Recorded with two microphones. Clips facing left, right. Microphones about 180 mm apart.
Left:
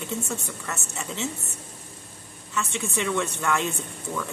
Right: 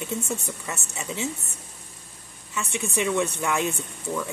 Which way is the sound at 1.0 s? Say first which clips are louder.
Right 1 dB; 15° right (ahead or behind).